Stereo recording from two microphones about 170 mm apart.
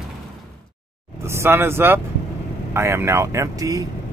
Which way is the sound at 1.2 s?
15° right (ahead or behind).